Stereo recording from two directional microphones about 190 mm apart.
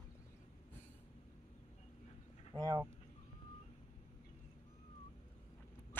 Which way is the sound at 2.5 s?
20° right (ahead or behind).